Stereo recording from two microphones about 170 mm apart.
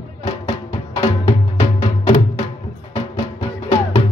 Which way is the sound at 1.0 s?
35° left (ahead or behind).